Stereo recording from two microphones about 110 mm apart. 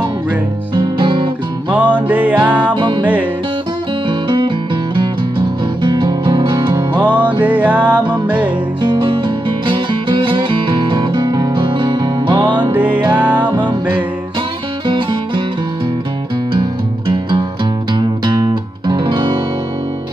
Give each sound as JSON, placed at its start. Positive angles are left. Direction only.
{"t": 0.7, "sound": "music", "side_deg": -50}
{"t": 1.7, "sound": "music", "side_deg": -15}
{"t": 2.5, "sound": "music", "side_deg": -45}
{"t": 4.1, "sound": "music", "side_deg": -50}
{"t": 5.8, "sound": "music", "side_deg": -45}
{"t": 7.0, "sound": "music", "side_deg": -10}
{"t": 8.8, "sound": "music", "side_deg": -50}
{"t": 12.7, "sound": "music", "side_deg": -15}
{"t": 14.9, "sound": "music", "side_deg": -50}
{"t": 17.9, "sound": "music", "side_deg": -40}